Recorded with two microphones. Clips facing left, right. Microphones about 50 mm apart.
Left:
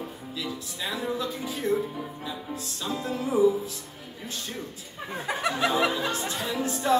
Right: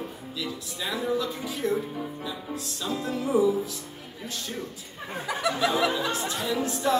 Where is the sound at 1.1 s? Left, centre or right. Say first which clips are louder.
Right 2 dB; left.